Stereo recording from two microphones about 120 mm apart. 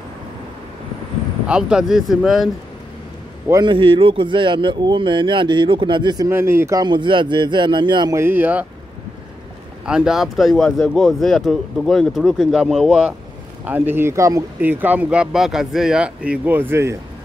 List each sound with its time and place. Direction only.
1.5 s speech: 5° right (ahead or behind)
3.6 s speech: 45° right (ahead or behind)
6.2 s speech: 20° right (ahead or behind)
6.8 s speech: 40° right (ahead or behind)
8.1 s speech: 20° right (ahead or behind)
9.8 s speech: 5° right (ahead or behind)
13.7 s speech: 15° right (ahead or behind)
14.6 s speech: 15° right (ahead or behind)